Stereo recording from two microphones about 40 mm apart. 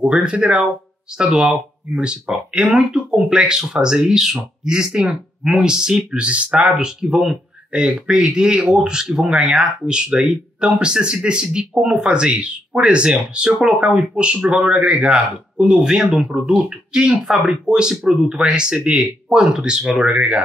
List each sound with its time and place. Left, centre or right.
0.2 s speech: right
6.1 s speech: right
6.8 s speech: centre
19.8 s speech: centre
20.1 s speech: right